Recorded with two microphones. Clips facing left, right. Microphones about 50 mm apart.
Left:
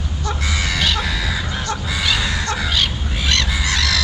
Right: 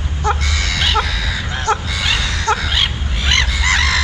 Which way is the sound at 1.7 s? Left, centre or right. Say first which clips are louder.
Right 11 dB; right.